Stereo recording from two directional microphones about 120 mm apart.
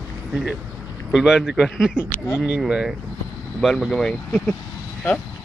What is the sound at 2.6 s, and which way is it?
A man's voice, 5° right (ahead or behind).